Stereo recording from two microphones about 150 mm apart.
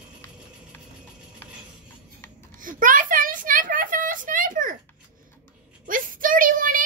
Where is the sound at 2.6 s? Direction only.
65° right (ahead or behind).